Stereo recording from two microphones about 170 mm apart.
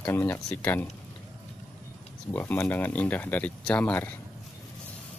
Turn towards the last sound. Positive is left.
turn(degrees=10)  # may be behind; listen again after turning